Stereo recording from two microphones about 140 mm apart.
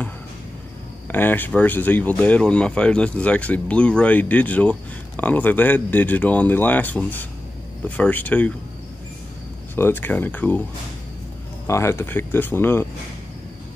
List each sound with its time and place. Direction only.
1.0 s speech: 15° left (ahead or behind)
9.8 s speech: 15° left (ahead or behind)
11.6 s speech: 20° left (ahead or behind)